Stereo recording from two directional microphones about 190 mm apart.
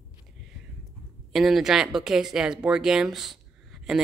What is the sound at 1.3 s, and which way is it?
Speech, centre (ahead or behind).